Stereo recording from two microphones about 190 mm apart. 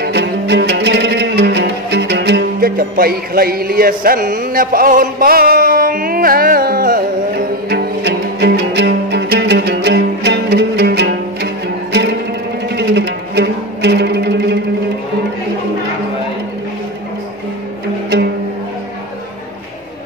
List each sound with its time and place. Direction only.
0.0 s music: 65° right (ahead or behind)
7.7 s music: 60° right (ahead or behind)